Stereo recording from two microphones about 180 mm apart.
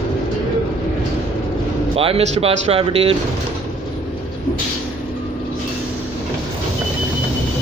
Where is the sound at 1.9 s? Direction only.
30° right (ahead or behind).